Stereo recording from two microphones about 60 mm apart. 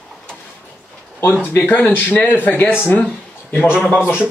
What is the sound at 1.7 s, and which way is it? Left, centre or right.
Speech, left.